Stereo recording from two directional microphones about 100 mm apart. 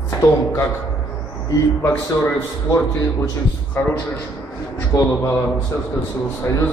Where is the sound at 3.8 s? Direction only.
15° left (ahead or behind).